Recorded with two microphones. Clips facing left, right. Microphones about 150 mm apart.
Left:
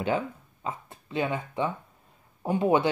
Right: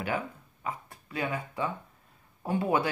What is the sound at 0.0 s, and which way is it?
Speech, 25° left (ahead or behind).